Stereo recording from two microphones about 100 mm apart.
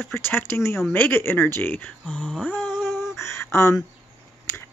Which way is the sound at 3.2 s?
25° left (ahead or behind).